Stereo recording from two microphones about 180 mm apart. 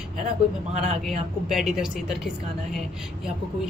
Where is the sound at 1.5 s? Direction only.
Centre (ahead or behind).